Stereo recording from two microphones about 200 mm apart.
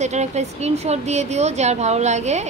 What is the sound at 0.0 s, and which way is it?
Speech, 35° right (ahead or behind).